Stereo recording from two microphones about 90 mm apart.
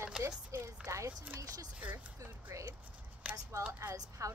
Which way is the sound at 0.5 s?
35° right (ahead or behind).